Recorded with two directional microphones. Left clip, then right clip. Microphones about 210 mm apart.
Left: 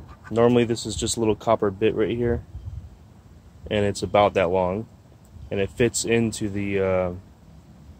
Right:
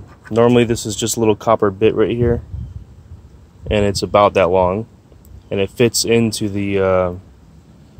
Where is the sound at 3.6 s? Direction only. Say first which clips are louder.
Right 7 dB; 30° right (ahead or behind).